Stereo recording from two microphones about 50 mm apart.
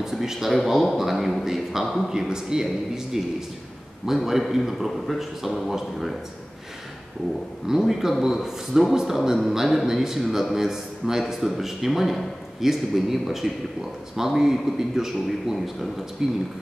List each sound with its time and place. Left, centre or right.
0.0 s a man's voice: centre
7.6 s a man's voice: centre